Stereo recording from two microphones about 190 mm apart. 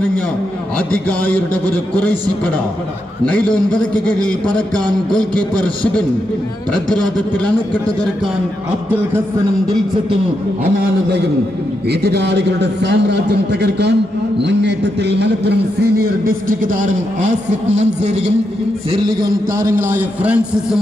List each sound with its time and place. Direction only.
1.0 s a man's voice: 10° left (ahead or behind)
11.9 s a man's voice: 60° right (ahead or behind); by 18.2 s 35° right (ahead or behind)
19.5 s a man's voice: 15° right (ahead or behind)